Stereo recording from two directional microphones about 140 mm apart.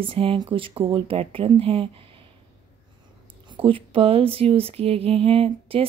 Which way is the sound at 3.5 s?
40° right (ahead or behind).